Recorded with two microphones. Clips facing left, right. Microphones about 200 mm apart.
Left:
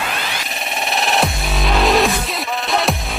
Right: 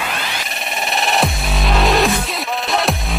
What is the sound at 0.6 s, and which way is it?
Music, centre (ahead or behind).